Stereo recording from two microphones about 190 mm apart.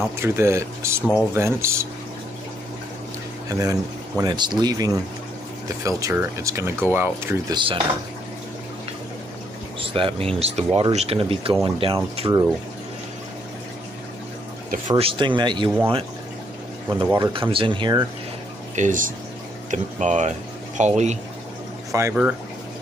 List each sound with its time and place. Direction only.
0.2 s speech: 15° right (ahead or behind)
3.4 s speech: 20° right (ahead or behind)
7.5 s speech: 25° right (ahead or behind)
9.8 s speech: 30° right (ahead or behind)
15.0 s speech: 25° right (ahead or behind)
17.0 s speech: 25° right (ahead or behind)
18.8 s speech: 45° right (ahead or behind)
21.9 s speech: 10° right (ahead or behind)